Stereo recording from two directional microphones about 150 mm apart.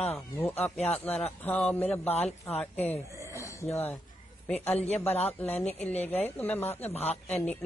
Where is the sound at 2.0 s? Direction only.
45° left (ahead or behind).